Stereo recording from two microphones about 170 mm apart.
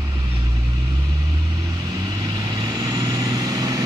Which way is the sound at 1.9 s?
20° right (ahead or behind).